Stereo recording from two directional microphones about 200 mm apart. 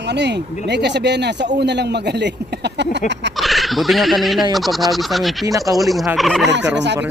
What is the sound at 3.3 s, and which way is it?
Speech, centre (ahead or behind).